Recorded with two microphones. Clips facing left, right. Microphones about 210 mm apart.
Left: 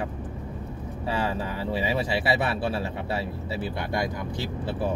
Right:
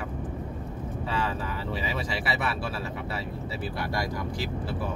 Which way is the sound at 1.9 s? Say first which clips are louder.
Left 7 dB; 30° left (ahead or behind).